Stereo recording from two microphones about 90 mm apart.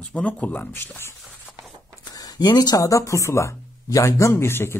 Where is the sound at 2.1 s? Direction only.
45° left (ahead or behind).